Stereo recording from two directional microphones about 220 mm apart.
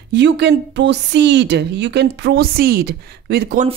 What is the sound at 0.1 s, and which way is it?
A woman's voice, 50° right (ahead or behind).